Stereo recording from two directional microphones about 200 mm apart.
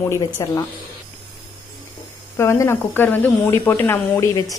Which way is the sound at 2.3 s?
15° left (ahead or behind).